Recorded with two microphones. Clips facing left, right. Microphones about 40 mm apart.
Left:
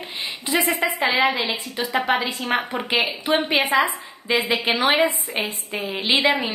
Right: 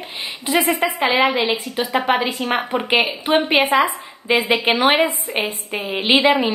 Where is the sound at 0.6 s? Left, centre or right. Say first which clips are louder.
Right 3 dB; right.